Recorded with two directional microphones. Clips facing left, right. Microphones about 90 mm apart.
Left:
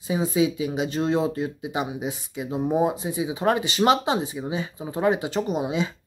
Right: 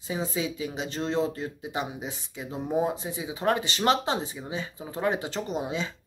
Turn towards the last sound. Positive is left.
turn(degrees=15)  # may be behind; listen again after turning